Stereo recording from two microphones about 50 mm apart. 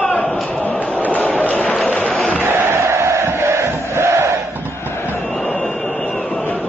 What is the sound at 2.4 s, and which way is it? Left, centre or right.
Crowd, right.